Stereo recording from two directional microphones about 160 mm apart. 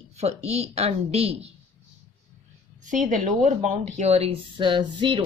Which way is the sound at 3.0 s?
50° right (ahead or behind).